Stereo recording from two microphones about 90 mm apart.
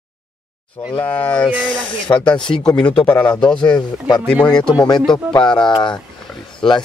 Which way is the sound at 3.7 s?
50° left (ahead or behind).